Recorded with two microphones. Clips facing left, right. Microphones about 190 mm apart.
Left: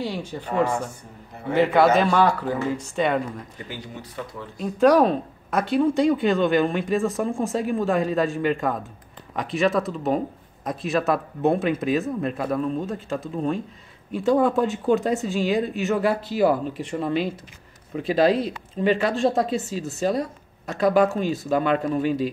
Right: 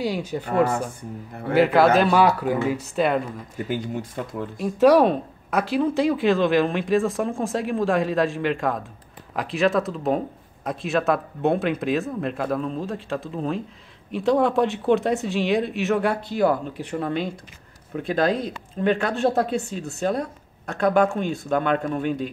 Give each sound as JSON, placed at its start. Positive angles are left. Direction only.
{"t": 0.3, "sound": "speech", "side_deg": -10}
{"t": 3.5, "sound": "speech", "side_deg": -50}
{"t": 4.6, "sound": "speech", "side_deg": 0}